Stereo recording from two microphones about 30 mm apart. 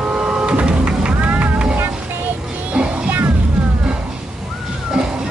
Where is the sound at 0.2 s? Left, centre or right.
Right.